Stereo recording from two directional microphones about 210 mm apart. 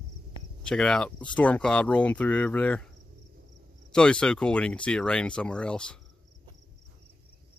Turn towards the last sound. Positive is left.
turn(degrees=5)  # may be behind; listen again after turning